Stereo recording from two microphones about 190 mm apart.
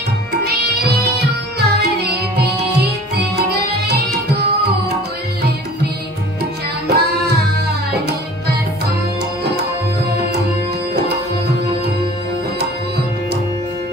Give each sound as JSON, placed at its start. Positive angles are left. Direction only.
{"t": 1.6, "sound": "music", "side_deg": -60}
{"t": 6.9, "sound": "music", "side_deg": -55}